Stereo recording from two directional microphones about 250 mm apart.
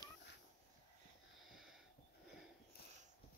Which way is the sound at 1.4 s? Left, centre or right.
Centre.